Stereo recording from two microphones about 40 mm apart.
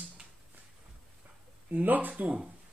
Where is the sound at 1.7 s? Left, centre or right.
Right.